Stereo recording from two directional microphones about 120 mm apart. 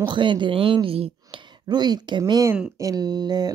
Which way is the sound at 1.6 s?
35° right (ahead or behind).